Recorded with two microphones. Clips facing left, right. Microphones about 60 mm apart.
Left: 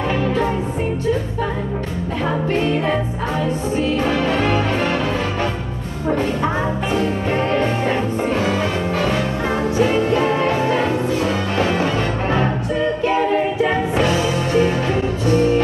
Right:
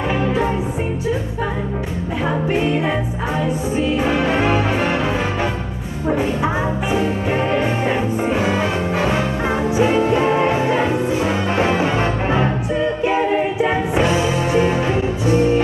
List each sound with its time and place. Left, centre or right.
2.5 s music: centre
6.0 s music: centre